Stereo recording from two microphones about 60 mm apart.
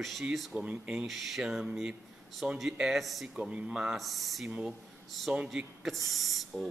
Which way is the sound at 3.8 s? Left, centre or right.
Centre.